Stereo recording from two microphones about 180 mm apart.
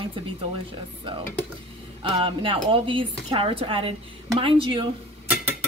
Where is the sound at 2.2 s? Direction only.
30° right (ahead or behind).